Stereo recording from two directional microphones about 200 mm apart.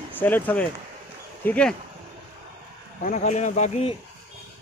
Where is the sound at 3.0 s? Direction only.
40° left (ahead or behind).